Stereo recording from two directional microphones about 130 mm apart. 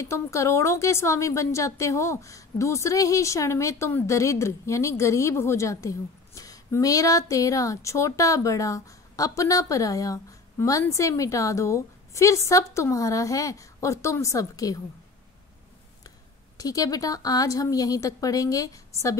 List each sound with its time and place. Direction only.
0.0 s a woman's voice: 25° left (ahead or behind)
16.5 s a woman's voice: 30° left (ahead or behind)